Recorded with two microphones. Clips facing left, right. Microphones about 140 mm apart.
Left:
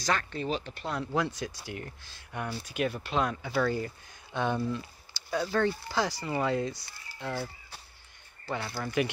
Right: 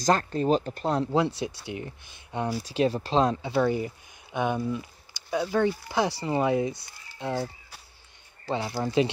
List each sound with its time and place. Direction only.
0.0 s speech: 40° right (ahead or behind); by 2.4 s 20° right (ahead or behind)
2.6 s speech: 30° right (ahead or behind)
8.5 s speech: 15° right (ahead or behind)